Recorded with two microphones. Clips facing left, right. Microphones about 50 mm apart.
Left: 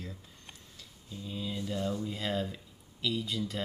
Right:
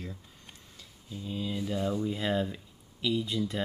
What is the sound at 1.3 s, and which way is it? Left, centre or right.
Speech, centre.